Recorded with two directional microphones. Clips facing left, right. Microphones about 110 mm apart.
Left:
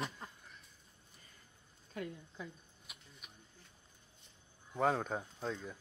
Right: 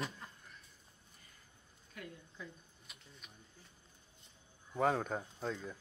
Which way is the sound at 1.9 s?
30° left (ahead or behind).